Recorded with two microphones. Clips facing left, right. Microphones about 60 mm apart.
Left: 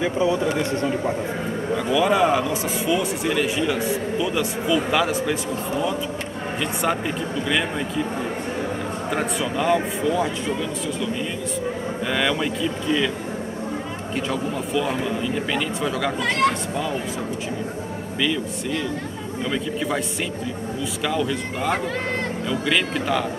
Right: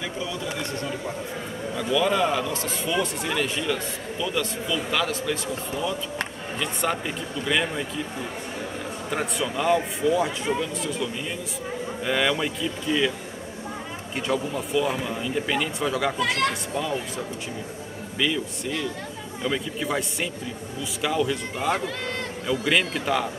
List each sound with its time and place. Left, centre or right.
0.0 s speech: left
1.8 s a man's voice: centre
9.1 s speech: centre
12.1 s speech: centre
14.1 s speech: centre
18.2 s speech: centre
21.0 s speech: centre